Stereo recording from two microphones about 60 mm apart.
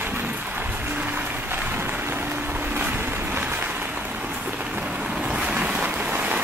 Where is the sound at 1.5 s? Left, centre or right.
Right.